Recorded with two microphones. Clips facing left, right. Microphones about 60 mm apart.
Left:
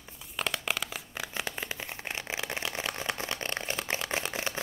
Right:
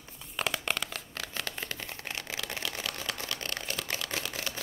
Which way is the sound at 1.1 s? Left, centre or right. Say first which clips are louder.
Left 2 dB; centre.